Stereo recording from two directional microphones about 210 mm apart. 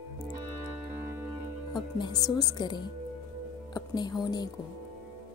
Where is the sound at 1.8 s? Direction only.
20° left (ahead or behind).